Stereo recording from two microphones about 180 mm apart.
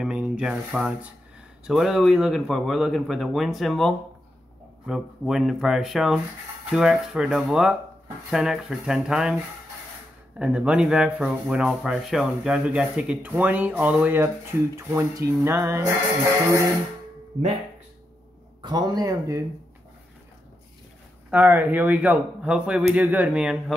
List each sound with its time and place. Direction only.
0.0 s a man's voice: 5° right (ahead or behind)
10.3 s speech: 5° right (ahead or behind)
18.6 s speech: 25° right (ahead or behind)
21.3 s speech: 10° right (ahead or behind)